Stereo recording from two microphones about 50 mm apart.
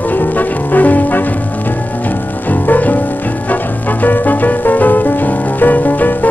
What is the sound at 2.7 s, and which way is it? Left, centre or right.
Music, left.